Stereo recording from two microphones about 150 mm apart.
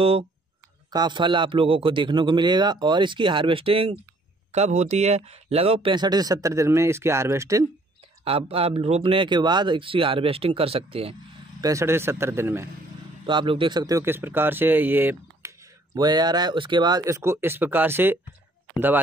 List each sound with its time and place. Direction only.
0.0 s a man's voice: 40° right (ahead or behind); by 7.6 s 20° right (ahead or behind)
8.2 s a man's voice: 40° right (ahead or behind)
11.6 s speech: 20° right (ahead or behind)
13.3 s speech: 35° right (ahead or behind); by 15.5 s 15° right (ahead or behind)
15.9 s speech: 25° right (ahead or behind)